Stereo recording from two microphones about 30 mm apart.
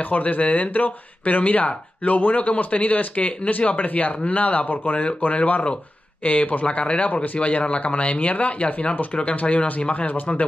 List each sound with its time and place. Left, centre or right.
0.1 s speech: left
3.7 s speech: left
5.3 s speech: left
6.6 s speech: left